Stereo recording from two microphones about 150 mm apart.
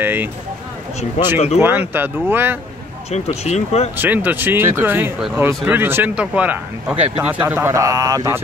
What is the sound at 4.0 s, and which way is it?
Speech, 10° right (ahead or behind).